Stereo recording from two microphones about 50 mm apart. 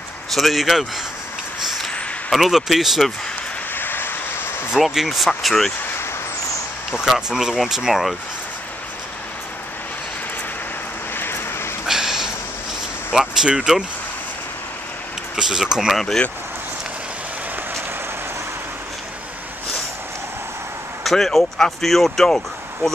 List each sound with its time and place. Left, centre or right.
0.3 s speech: centre
2.3 s speech: centre
3.7 s vehicle: left
4.7 s speech: centre
5.4 s speech: centre
6.9 s speech: centre
11.1 s vehicle: left
11.8 s a sound: centre
13.1 s speech: centre
15.3 s speech: centre
21.0 s speech: centre